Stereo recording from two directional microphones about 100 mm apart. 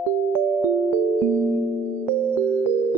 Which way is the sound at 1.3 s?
20° right (ahead or behind).